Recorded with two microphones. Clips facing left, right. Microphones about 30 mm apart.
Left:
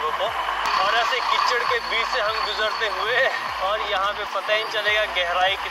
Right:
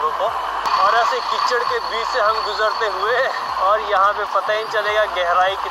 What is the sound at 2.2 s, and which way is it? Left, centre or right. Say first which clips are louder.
Speech: right 5 dB; centre.